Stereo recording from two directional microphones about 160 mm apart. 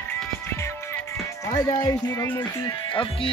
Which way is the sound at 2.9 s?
35° left (ahead or behind).